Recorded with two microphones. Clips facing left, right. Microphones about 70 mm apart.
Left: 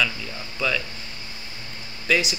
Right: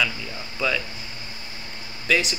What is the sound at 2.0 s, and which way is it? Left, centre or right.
Speech, centre.